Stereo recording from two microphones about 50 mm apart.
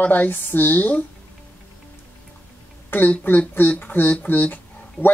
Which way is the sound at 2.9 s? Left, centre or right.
Left.